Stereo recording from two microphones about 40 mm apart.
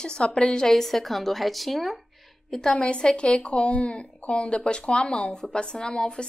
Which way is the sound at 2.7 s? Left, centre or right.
Left.